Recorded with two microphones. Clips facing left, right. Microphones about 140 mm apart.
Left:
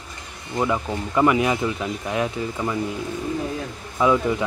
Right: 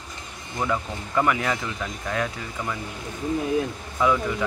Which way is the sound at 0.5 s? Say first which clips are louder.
Left 4 dB; 15° left (ahead or behind).